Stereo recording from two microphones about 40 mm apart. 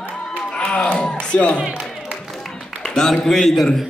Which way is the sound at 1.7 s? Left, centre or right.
Right.